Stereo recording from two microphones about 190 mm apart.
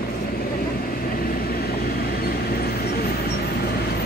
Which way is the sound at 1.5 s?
55° left (ahead or behind).